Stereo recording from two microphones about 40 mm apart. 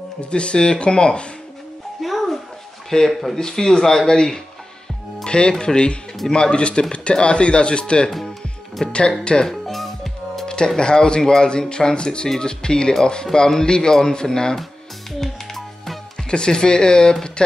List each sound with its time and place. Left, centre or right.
0.2 s speech: left
2.0 s music: centre
3.1 s speech: centre
3.3 s speech: centre
9.5 s music: centre
10.4 s a sound: left
10.8 s speech: left
15.1 s music: centre
16.3 s speech: left